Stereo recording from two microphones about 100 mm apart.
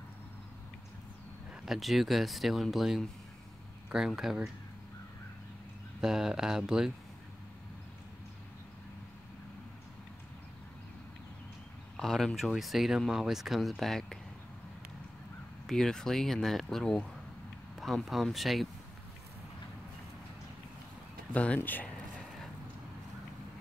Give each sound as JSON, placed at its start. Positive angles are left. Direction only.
{"t": 1.7, "sound": "speech", "side_deg": 0}
{"t": 5.9, "sound": "speech", "side_deg": -5}
{"t": 12.0, "sound": "speech", "side_deg": 5}
{"t": 15.6, "sound": "speech", "side_deg": 5}
{"t": 21.3, "sound": "speech", "side_deg": 10}